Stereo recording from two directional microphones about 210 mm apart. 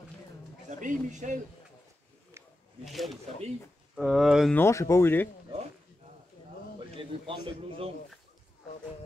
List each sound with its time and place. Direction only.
0.7 s speech: 35° right (ahead or behind)
2.8 s speech: centre (ahead or behind)
4.6 s speech: 15° left (ahead or behind)
7.0 s a man's voice: 25° right (ahead or behind)